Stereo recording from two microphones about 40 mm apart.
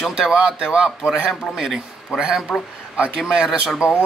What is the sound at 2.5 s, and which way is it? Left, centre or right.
Speech, centre.